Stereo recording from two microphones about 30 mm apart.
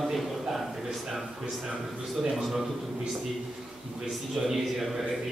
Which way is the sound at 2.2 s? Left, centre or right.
Centre.